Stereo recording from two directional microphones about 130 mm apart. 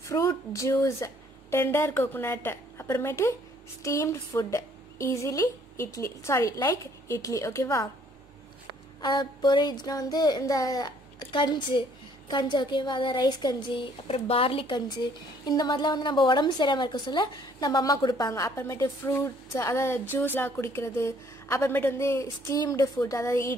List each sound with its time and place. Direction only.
0.0 s a woman's voice: 25° left (ahead or behind)
9.0 s speech: 35° left (ahead or behind)
15.4 s a woman's voice: 30° left (ahead or behind)